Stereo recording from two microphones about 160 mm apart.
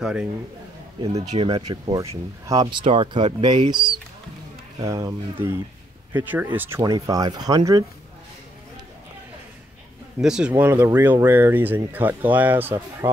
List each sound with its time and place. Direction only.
0.0 s speech: 5° right (ahead or behind)
1.1 s speech: 40° right (ahead or behind)
1.5 s speech: 25° right (ahead or behind)
6.8 s speech: 25° right (ahead or behind)
10.1 s speech: 5° right (ahead or behind)